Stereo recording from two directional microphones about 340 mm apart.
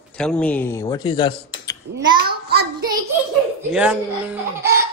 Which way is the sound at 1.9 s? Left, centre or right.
Right.